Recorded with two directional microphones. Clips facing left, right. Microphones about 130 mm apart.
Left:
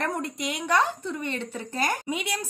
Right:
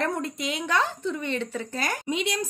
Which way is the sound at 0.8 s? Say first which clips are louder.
Right 1 dB; 50° left (ahead or behind).